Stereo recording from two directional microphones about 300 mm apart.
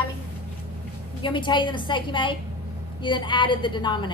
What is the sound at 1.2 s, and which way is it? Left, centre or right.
A woman's voice, centre.